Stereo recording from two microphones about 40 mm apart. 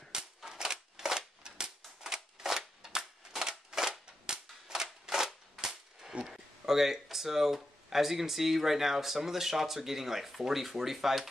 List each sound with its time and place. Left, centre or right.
0.1 s a sound: centre
2.0 s cap gun: centre
6.2 s speech: centre